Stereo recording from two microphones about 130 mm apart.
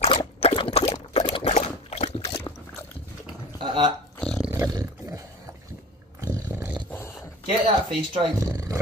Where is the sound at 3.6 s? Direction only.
40° right (ahead or behind).